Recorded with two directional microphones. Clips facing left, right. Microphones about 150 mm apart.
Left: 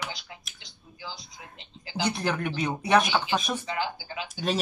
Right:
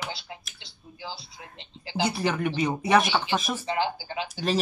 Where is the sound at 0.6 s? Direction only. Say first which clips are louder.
Right 2 dB; 30° right (ahead or behind).